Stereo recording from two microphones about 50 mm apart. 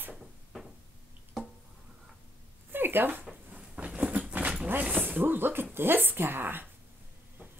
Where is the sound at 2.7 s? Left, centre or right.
Right.